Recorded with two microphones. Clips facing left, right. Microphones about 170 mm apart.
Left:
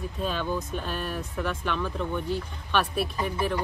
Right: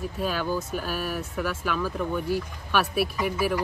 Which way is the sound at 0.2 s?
5° right (ahead or behind).